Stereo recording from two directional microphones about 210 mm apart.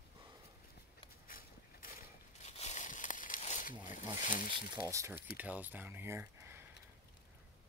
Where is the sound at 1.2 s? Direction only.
40° left (ahead or behind).